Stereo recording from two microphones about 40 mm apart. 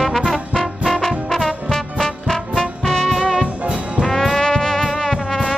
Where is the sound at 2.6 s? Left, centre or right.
Centre.